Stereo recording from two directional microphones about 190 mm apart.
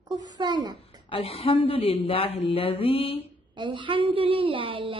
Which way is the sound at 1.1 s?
30° left (ahead or behind).